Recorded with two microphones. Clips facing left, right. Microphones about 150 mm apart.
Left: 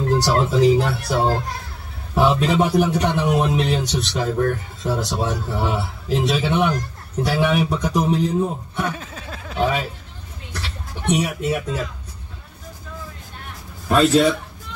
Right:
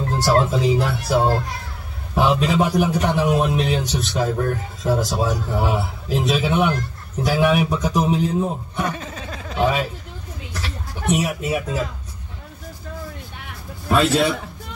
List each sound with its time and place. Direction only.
0.2 s a man's voice: centre (ahead or behind)
8.8 s speech: 5° left (ahead or behind)
11.1 s a man's voice: 5° right (ahead or behind)
13.8 s a man's voice: 5° right (ahead or behind)